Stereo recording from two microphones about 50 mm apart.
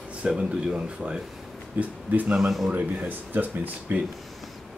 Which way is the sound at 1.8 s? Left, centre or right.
Right.